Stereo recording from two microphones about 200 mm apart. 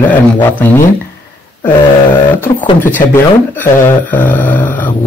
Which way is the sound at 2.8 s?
10° left (ahead or behind).